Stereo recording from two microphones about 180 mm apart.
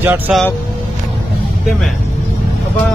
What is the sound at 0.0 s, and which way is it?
Speech, 10° right (ahead or behind).